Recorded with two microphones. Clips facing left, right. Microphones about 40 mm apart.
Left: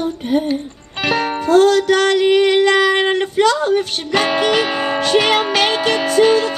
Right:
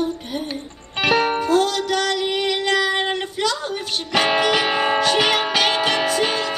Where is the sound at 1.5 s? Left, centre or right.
Left.